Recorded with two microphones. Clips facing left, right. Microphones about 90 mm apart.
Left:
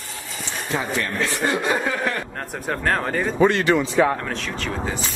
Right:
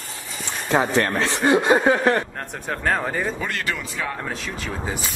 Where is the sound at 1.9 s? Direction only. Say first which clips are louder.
Right 6 dB; 35° right (ahead or behind).